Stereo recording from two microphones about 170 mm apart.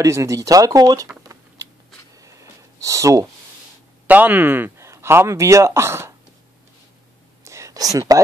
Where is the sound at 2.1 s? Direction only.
20° right (ahead or behind).